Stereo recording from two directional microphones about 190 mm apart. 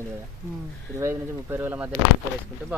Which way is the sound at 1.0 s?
10° right (ahead or behind).